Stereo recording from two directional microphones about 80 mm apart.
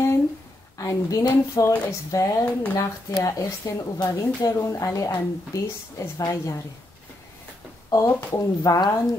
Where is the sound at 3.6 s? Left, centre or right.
Left.